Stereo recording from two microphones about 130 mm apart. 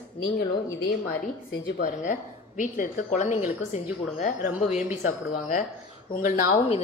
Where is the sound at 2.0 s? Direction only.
90° left.